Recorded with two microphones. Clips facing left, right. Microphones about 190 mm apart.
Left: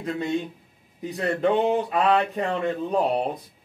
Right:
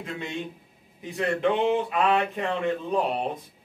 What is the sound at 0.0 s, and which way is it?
A man's voice, 40° left (ahead or behind).